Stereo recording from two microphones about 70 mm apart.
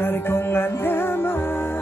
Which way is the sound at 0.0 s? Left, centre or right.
Left.